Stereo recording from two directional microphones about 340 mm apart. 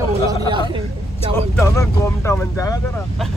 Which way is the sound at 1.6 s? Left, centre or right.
Centre.